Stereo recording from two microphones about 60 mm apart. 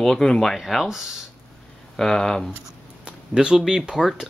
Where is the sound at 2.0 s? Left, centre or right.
Centre.